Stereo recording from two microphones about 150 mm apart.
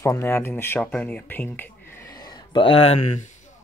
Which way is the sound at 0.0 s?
20° left (ahead or behind).